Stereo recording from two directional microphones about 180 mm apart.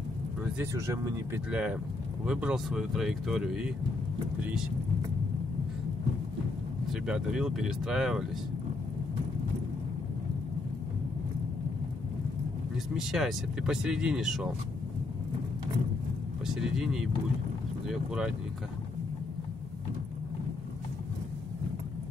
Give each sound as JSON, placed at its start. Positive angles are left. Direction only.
{"t": 0.4, "sound": "speech", "side_deg": -15}
{"t": 1.5, "sound": "speech", "side_deg": -5}
{"t": 6.9, "sound": "speech", "side_deg": -5}
{"t": 12.9, "sound": "speech", "side_deg": 0}
{"t": 16.5, "sound": "speech", "side_deg": -5}